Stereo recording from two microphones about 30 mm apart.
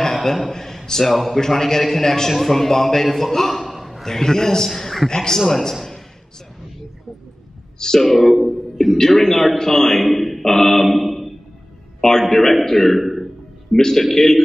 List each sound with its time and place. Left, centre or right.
0.1 s a man's voice: centre
3.6 s a sound: centre
4.0 s a man's voice: centre
5.1 s a man's voice: left
8.0 s a man's voice: centre
10.1 s mantra: centre
12.2 s a man's voice: centre
12.7 s a sound: centre
13.7 s a man's voice: centre